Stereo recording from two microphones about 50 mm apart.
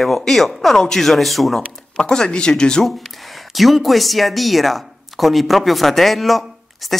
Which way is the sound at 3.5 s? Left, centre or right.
Centre.